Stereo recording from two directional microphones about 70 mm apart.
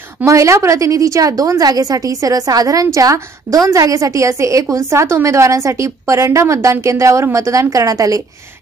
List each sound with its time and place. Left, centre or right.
0.2 s a woman's voice: right